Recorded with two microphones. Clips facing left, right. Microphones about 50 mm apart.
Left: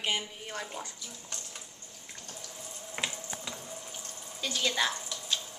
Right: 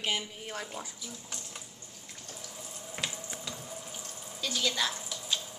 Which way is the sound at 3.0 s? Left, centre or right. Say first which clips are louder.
Left 2 dB; centre.